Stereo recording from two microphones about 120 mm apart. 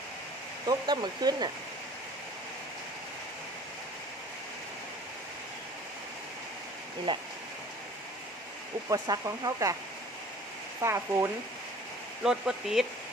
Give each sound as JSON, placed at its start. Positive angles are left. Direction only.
{"t": 0.7, "sound": "speech", "side_deg": -35}
{"t": 7.1, "sound": "speech", "side_deg": -40}
{"t": 8.8, "sound": "speech", "side_deg": -30}
{"t": 10.8, "sound": "speech", "side_deg": -25}
{"t": 12.2, "sound": "speech", "side_deg": -5}